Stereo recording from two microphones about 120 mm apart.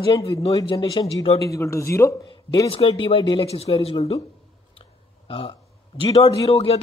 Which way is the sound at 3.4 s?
55° left (ahead or behind).